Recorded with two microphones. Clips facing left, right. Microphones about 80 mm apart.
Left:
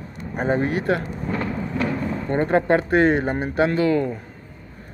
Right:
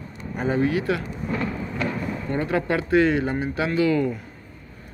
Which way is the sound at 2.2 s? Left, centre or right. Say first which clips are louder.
Left 5 dB; left.